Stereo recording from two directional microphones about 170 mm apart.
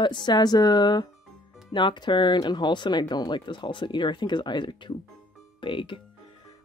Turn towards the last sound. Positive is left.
turn(degrees=30)  # may be behind; listen again after turning